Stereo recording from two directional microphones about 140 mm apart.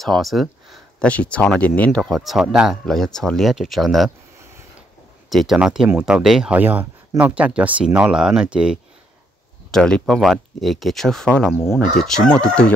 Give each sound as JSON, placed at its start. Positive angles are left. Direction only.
{"t": 0.0, "sound": "speech", "side_deg": 0}
{"t": 2.0, "sound": "speech", "side_deg": 0}
{"t": 5.3, "sound": "speech", "side_deg": 0}
{"t": 9.7, "sound": "speech", "side_deg": 5}